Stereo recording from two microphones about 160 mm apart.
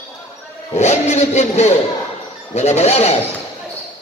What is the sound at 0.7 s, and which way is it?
Speech, 45° left (ahead or behind).